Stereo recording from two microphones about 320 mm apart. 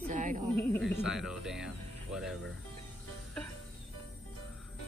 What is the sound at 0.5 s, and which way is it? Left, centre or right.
Speech, centre.